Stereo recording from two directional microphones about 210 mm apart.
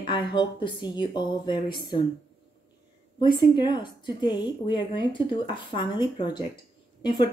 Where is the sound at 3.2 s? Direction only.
20° left (ahead or behind).